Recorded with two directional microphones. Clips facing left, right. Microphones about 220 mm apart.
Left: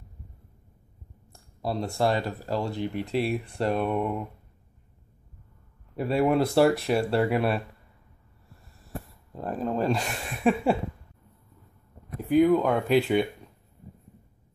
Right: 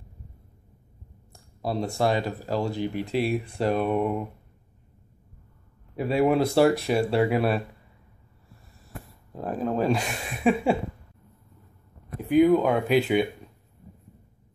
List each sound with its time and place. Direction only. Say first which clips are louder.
1.6 s speech: right 1 dB; centre (ahead or behind)
5.9 s speech: right 1 dB; centre (ahead or behind)
8.9 s a sound: left 4 dB; 35° left (ahead or behind)
9.3 s speech: right 2 dB; 5° right (ahead or behind)
12.3 s speech: right 2 dB; 5° right (ahead or behind)